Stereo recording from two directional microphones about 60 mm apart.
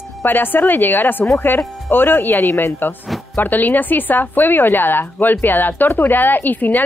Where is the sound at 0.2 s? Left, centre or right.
Left.